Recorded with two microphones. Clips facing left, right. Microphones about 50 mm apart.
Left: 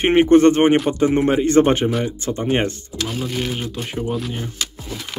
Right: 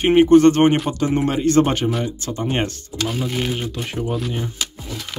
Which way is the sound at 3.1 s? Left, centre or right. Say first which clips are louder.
Right 1 dB; centre.